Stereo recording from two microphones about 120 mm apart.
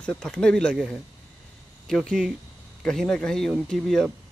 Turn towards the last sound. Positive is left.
turn(degrees=5)  # may be behind; listen again after turning